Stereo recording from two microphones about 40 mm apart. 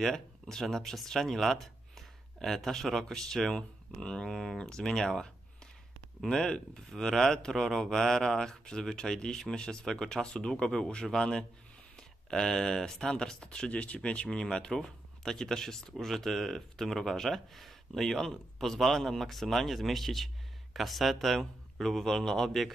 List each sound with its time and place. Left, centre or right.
0.0 s speech: centre
6.3 s speech: centre
14.7 s speech: centre